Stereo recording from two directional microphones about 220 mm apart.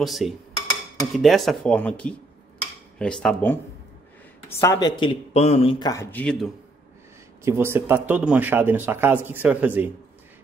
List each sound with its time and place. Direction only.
0.0 s speech: centre (ahead or behind)
7.4 s speech: 10° right (ahead or behind)